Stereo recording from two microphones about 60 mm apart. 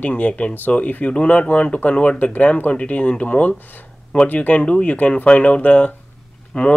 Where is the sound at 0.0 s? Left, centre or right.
Left.